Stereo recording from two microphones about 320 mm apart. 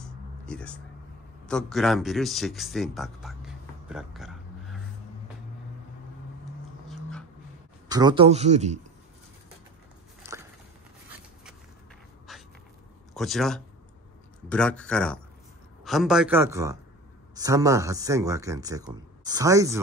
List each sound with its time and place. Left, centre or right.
0.0 s a sound: centre
1.4 s speech: centre
6.9 s dog: centre
7.9 s speech: centre
10.3 s walk: centre
12.3 s dog: centre
13.1 s a man's voice: centre